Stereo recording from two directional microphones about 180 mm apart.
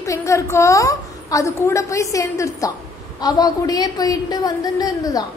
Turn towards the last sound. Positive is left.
turn(degrees=20)  # may be behind; listen again after turning